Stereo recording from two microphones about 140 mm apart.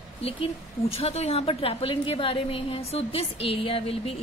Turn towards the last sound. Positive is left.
turn(degrees=45)  # may be behind; listen again after turning